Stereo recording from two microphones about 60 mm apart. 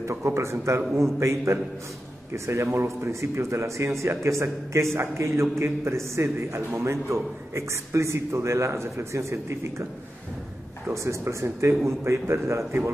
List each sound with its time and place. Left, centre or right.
0.0 s a man's voice: right
10.9 s a man's voice: right